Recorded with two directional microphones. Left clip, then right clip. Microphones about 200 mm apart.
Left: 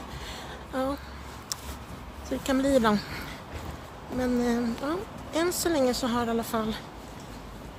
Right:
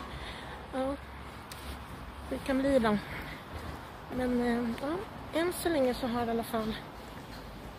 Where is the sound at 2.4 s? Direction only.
20° left (ahead or behind).